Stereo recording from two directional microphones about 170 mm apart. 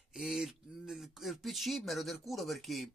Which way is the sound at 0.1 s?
Centre (ahead or behind).